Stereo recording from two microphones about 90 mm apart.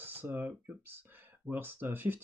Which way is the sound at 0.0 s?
25° right (ahead or behind).